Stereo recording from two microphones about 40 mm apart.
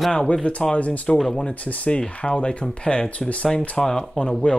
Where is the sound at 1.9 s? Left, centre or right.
Left.